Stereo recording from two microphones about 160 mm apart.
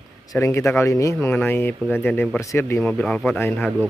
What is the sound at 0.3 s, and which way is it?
Speech, 15° left (ahead or behind).